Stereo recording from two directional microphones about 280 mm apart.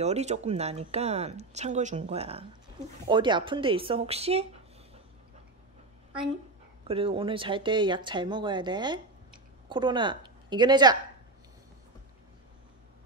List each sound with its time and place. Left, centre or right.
0.0 s speech: right
6.9 s a woman's voice: centre